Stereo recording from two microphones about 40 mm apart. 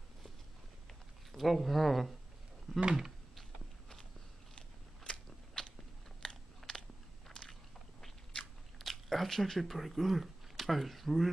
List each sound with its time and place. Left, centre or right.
1.3 s speech: centre
2.8 s speech: centre
4.6 s biting: left
6.2 s computer keyboard: centre
8.7 s speech: centre